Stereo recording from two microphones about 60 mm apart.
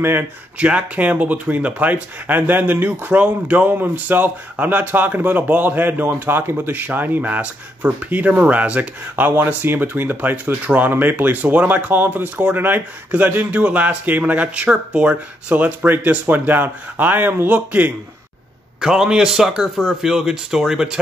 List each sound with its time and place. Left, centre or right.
0.6 s speech: right
18.8 s speech: centre